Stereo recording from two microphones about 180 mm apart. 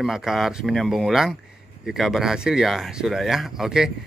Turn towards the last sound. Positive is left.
turn(degrees=-5)  # may be behind; listen again after turning